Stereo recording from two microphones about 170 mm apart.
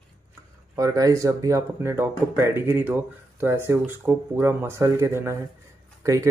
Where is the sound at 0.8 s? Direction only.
20° right (ahead or behind).